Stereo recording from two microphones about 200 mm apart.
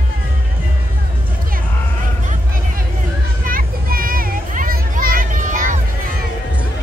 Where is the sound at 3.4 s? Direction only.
45° right (ahead or behind).